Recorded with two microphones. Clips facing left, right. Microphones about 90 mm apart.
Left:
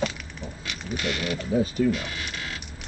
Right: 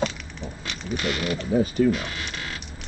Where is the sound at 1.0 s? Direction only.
40° right (ahead or behind).